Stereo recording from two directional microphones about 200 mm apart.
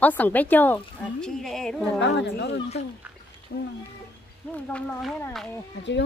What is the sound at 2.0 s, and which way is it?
Speech, 60° left (ahead or behind).